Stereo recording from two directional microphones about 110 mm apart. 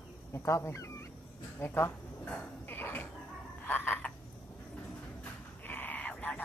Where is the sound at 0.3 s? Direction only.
25° left (ahead or behind).